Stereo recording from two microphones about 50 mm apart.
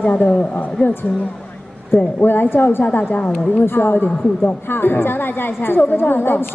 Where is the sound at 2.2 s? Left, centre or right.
Left.